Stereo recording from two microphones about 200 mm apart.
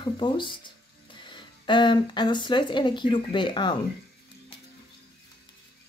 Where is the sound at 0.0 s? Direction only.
25° left (ahead or behind).